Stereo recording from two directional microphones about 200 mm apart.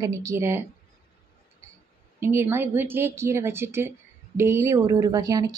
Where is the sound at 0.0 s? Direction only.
15° right (ahead or behind).